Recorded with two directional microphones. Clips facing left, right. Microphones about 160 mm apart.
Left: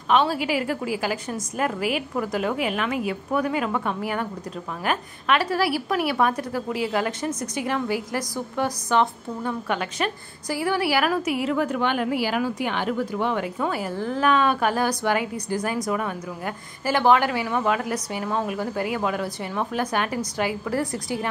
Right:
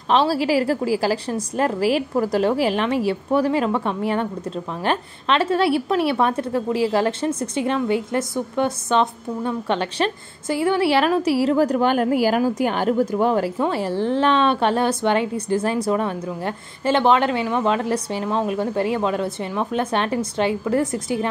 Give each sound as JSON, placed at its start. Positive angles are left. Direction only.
{"t": 0.1, "sound": "a woman's voice", "side_deg": -35}
{"t": 13.6, "sound": "speech", "side_deg": -30}